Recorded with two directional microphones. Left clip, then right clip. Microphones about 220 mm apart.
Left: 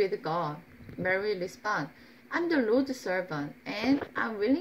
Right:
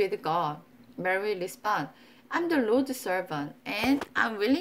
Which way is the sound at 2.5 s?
10° right (ahead or behind).